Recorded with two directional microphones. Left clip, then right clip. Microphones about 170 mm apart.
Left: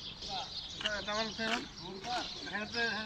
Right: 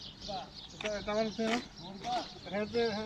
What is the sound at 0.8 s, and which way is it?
Speech, 30° right (ahead or behind).